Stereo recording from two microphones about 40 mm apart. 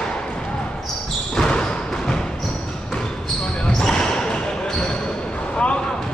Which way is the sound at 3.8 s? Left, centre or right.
Centre.